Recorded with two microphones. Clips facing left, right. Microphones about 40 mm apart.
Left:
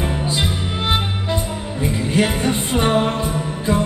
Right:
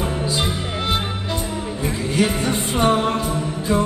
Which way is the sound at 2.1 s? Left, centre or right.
Left.